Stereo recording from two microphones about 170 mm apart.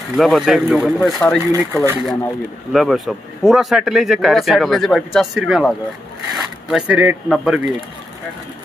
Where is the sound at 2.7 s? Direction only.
Centre (ahead or behind).